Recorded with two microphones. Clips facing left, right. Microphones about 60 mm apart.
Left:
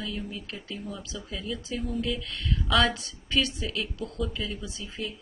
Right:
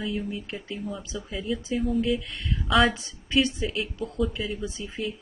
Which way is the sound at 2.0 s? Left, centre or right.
Centre.